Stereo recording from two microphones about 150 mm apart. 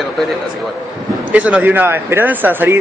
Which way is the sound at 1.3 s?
10° right (ahead or behind).